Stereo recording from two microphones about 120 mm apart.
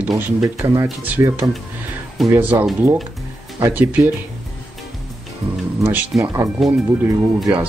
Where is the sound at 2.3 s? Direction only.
15° right (ahead or behind).